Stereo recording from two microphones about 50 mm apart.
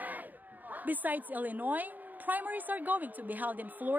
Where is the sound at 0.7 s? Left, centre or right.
Right.